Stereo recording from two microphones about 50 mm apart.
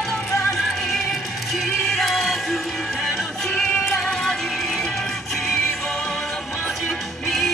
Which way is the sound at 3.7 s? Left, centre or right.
Left.